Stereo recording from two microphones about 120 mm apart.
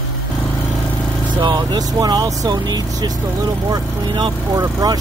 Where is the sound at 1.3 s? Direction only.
40° right (ahead or behind).